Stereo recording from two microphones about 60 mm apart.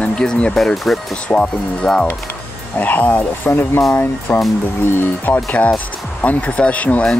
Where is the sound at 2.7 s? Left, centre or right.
Left.